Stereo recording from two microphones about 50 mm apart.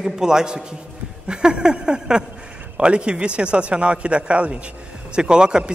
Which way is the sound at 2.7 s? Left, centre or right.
Centre.